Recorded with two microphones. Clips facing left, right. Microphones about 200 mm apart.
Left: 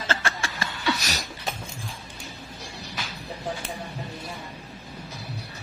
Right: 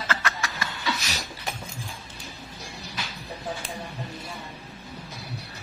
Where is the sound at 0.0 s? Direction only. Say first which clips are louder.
Left 1 dB; 30° left (ahead or behind).